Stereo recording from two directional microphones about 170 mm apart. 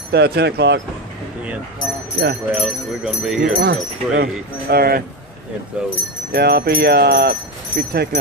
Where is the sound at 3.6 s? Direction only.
70° right (ahead or behind).